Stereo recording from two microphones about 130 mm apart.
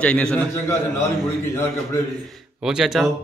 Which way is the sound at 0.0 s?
10° left (ahead or behind).